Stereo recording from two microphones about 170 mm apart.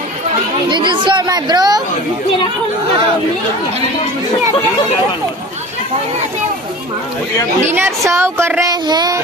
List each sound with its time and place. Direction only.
0.7 s speech: 25° right (ahead or behind)
7.6 s a woman's voice: 15° right (ahead or behind)